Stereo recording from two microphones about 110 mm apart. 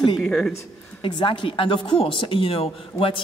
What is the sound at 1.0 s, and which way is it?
Speech, 50° left (ahead or behind).